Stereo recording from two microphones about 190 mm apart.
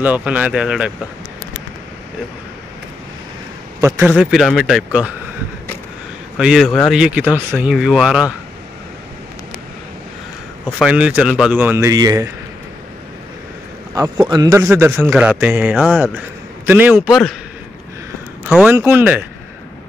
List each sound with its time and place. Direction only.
0.0 s speech: 5° right (ahead or behind)
3.8 s speech: 15° right (ahead or behind)
4.2 s speech: centre (ahead or behind)
6.3 s speech: 5° right (ahead or behind)
10.8 s speech: 5° right (ahead or behind)
13.9 s a man's voice: 20° right (ahead or behind)
14.7 s a man's voice: 5° right (ahead or behind)
18.5 s speech: 10° right (ahead or behind)